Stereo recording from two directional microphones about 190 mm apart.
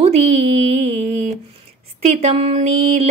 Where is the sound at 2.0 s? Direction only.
35° right (ahead or behind).